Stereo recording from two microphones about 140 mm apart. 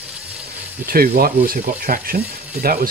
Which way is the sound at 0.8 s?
90° right.